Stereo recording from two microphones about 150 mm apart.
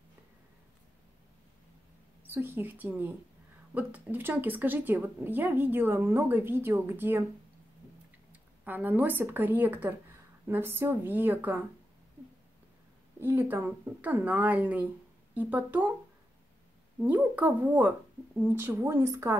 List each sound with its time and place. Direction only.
2.2 s a woman's voice: 15° right (ahead or behind)
8.3 s a woman's voice: 10° right (ahead or behind)
13.2 s a woman's voice: 10° right (ahead or behind)
17.0 s a woman's voice: 10° right (ahead or behind)